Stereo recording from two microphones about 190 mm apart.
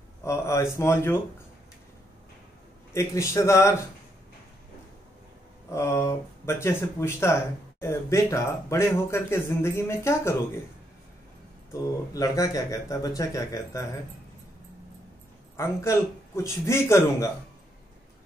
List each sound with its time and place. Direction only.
0.2 s speech: 15° left (ahead or behind)
2.9 s speech: 15° left (ahead or behind)
5.7 s speech: 15° left (ahead or behind)
11.7 s speech: 20° left (ahead or behind)
15.5 s speech: 15° left (ahead or behind)